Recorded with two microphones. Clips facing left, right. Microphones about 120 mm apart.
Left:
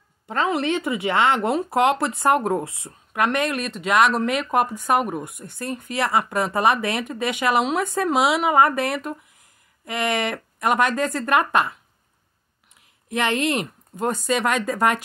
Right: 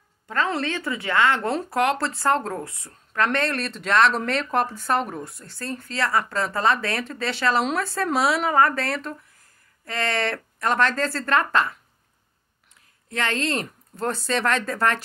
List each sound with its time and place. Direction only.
0.3 s speech: 20° left (ahead or behind)
2.9 s speech: 10° left (ahead or behind)
13.1 s speech: 20° left (ahead or behind)